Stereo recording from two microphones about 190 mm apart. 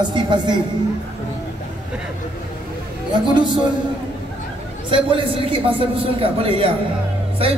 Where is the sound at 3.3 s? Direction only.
25° right (ahead or behind).